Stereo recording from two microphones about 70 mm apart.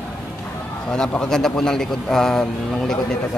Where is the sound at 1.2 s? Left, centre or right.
Centre.